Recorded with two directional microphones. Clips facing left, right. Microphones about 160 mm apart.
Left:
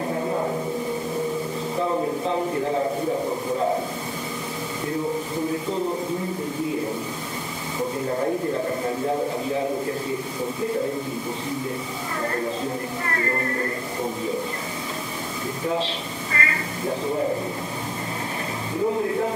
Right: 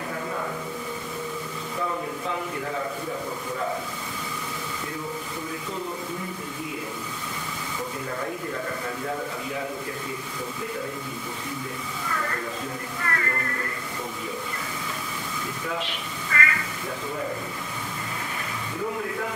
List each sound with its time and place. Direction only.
0.1 s a sound: 30° left (ahead or behind)
1.8 s a sound: 30° left (ahead or behind)
8.1 s a man's voice: 30° left (ahead or behind)
12.1 s a man's voice: 30° left (ahead or behind)
13.0 s music: 30° left (ahead or behind)
15.6 s speech: 30° left (ahead or behind)
18.9 s a man's voice: 30° left (ahead or behind)